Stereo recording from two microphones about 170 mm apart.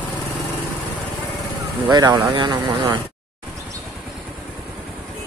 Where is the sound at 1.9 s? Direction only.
25° right (ahead or behind).